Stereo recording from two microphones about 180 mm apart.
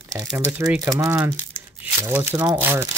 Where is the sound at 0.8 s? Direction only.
15° right (ahead or behind).